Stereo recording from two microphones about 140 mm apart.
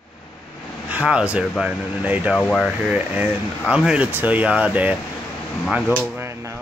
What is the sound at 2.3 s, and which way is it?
Speech, 5° left (ahead or behind).